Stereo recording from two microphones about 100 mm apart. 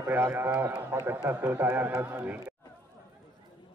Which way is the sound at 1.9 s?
10° right (ahead or behind).